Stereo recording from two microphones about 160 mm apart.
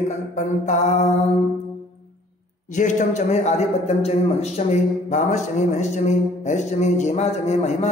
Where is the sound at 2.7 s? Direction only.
50° left (ahead or behind).